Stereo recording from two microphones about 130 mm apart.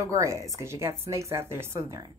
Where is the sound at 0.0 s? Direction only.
25° right (ahead or behind).